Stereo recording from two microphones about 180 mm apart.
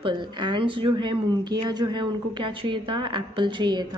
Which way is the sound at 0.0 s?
25° right (ahead or behind).